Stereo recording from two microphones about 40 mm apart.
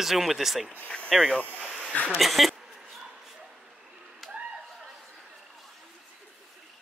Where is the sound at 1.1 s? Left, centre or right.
Centre.